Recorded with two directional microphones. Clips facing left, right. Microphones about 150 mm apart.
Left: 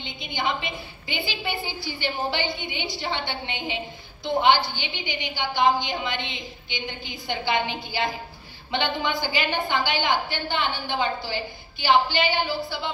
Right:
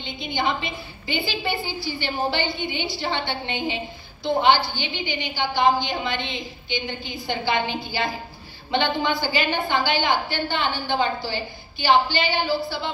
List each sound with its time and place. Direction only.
0.0 s a woman's voice: 15° left (ahead or behind)
11.8 s a woman's voice: 15° left (ahead or behind)